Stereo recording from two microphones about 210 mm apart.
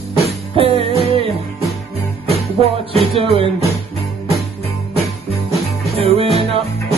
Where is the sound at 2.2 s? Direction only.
30° right (ahead or behind).